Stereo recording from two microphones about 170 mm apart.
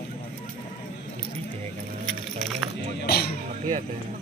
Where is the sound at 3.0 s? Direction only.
65° left (ahead or behind).